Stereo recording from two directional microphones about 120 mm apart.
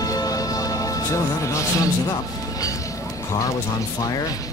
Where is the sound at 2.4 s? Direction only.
30° left (ahead or behind).